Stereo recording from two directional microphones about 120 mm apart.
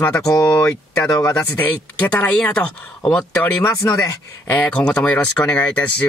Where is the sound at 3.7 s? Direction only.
25° left (ahead or behind).